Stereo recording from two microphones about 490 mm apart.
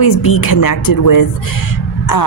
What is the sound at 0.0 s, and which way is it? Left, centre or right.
Speech, left.